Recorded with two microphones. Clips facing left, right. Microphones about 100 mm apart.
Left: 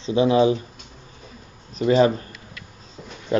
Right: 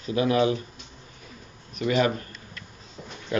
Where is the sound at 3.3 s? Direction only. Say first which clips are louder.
Left 5 dB; 25° left (ahead or behind).